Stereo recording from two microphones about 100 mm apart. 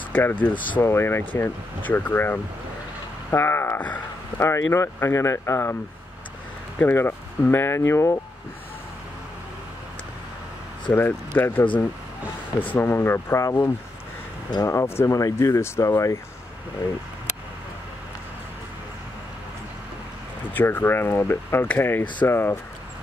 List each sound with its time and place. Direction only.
0.1 s speech: 20° left (ahead or behind)
6.8 s speech: 20° left (ahead or behind)
10.9 s speech: 20° left (ahead or behind)
12.7 s speech: 25° left (ahead or behind)
20.5 s speech: 20° left (ahead or behind)